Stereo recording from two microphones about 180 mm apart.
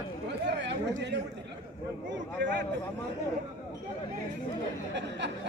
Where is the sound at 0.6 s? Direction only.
70° right (ahead or behind).